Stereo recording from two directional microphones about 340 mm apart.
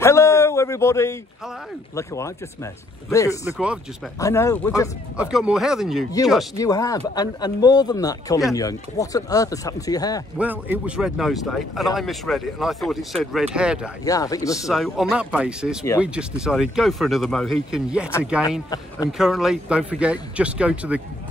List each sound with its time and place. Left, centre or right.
0.0 s a sound: centre
2.0 s speech: centre
3.4 s speech: centre
4.2 s speech: centre
5.1 s speech: centre
6.5 s speech: centre
10.3 s speech: centre
14.0 s speech: centre
19.1 s speech: centre